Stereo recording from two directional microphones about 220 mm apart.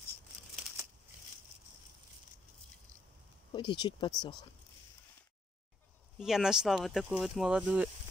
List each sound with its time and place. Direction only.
3.5 s speech: 20° left (ahead or behind)
6.1 s speech: centre (ahead or behind)